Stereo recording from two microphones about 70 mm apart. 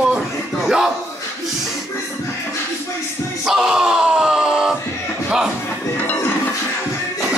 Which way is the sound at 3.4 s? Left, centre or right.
Centre.